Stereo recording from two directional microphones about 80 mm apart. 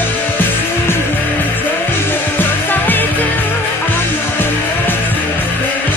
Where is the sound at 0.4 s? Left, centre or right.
Left.